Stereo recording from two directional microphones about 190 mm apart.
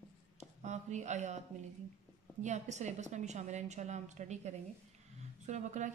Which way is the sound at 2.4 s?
40° right (ahead or behind).